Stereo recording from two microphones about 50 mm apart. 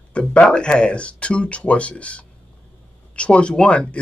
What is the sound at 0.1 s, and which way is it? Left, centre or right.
A man's voice, left.